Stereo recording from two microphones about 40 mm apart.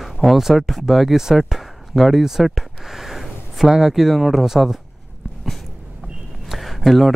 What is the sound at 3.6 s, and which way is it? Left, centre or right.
Speech, centre.